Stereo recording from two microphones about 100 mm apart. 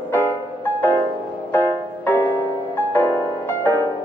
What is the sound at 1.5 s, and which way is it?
Music, 20° left (ahead or behind).